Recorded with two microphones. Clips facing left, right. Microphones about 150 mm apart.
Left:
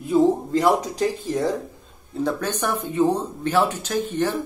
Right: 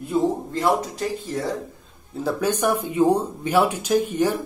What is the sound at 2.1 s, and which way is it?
Speech, 5° right (ahead or behind).